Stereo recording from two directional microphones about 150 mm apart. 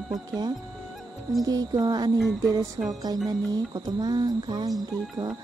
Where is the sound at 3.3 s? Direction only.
25° right (ahead or behind).